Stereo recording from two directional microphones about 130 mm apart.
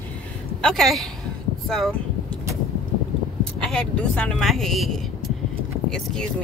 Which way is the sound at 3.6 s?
5° left (ahead or behind).